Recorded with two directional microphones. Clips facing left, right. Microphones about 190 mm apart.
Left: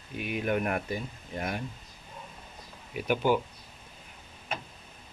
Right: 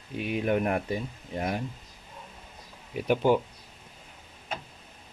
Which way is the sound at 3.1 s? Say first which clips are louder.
Right 3 dB; 30° right (ahead or behind).